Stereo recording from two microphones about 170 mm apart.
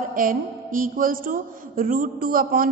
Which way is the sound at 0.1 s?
55° right (ahead or behind).